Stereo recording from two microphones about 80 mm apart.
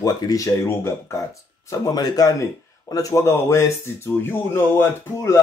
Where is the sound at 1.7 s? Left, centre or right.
Left.